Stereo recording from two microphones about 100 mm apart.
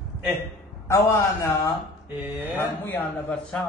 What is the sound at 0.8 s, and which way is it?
Speech, 30° left (ahead or behind).